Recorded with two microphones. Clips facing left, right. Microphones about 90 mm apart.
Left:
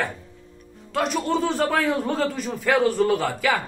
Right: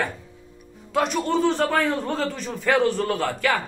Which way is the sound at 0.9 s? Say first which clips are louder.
Right 1 dB; centre (ahead or behind).